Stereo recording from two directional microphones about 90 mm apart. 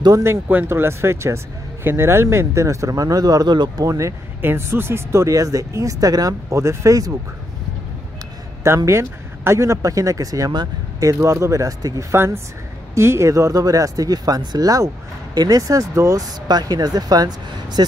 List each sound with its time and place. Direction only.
0.2 s speech: 25° right (ahead or behind); by 4.1 s 40° right (ahead or behind)
4.4 s speech: 25° right (ahead or behind)
8.6 s speech: 30° right (ahead or behind); by 17.9 s 55° right (ahead or behind)